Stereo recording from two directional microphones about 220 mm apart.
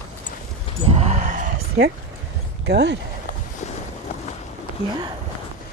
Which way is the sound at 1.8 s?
55° right (ahead or behind).